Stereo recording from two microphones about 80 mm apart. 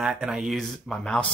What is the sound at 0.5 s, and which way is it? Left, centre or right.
Speech, centre.